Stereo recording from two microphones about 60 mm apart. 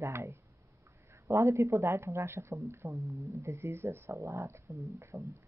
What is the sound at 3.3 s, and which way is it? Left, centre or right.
Speech, right.